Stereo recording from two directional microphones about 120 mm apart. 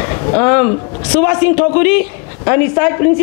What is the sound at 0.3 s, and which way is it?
A man's voice, 20° left (ahead or behind).